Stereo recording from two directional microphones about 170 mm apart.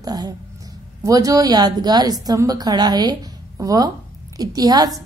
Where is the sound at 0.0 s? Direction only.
20° right (ahead or behind).